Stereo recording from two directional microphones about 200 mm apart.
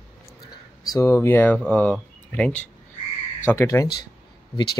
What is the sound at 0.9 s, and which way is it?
Speech, 15° left (ahead or behind).